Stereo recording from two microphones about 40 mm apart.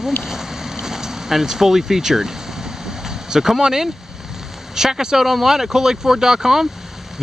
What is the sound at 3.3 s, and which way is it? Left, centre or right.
Speech, centre.